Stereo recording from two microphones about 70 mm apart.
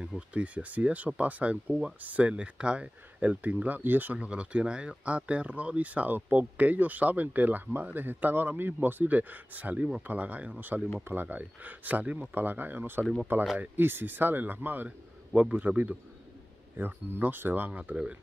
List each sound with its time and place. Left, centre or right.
0.0 s speech: centre
1.7 s speech: centre
2.0 s speech: right